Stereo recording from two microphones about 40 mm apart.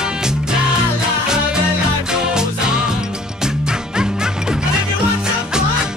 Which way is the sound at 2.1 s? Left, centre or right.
Centre.